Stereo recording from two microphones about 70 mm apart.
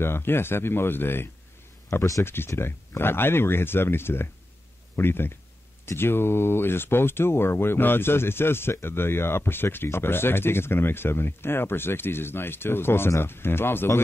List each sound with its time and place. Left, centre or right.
0.0 s speech: left